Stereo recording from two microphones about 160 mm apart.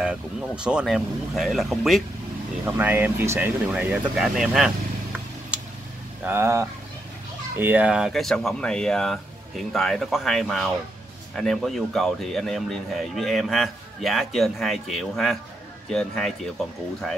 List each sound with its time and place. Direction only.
0.0 s speech: 5° right (ahead or behind)
2.6 s speech: 10° right (ahead or behind)
6.2 s speech: 15° right (ahead or behind); by 16.3 s 5° left (ahead or behind)